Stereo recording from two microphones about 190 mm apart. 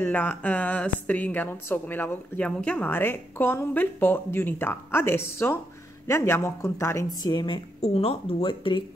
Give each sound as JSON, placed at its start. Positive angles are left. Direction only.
{"t": 0.0, "sound": "a woman's voice", "side_deg": 10}